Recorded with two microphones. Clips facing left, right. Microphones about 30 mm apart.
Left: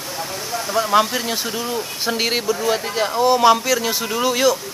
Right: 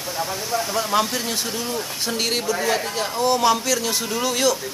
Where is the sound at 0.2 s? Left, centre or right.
Centre.